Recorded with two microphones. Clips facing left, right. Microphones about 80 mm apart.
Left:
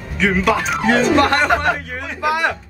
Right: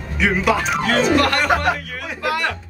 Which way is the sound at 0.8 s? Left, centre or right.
Left.